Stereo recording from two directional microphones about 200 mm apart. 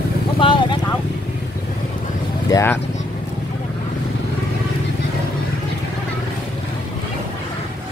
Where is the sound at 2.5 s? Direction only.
15° left (ahead or behind).